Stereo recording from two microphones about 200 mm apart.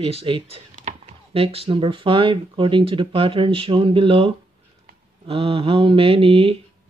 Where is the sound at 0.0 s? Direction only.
30° right (ahead or behind).